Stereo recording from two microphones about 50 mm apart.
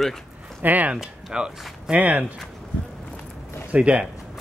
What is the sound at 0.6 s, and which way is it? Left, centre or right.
Speech, right.